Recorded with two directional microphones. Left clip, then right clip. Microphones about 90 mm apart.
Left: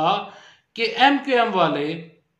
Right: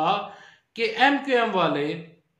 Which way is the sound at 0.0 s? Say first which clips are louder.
Left 3 dB; 25° left (ahead or behind).